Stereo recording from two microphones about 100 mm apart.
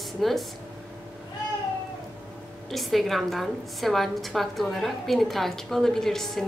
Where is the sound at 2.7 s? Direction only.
Centre (ahead or behind).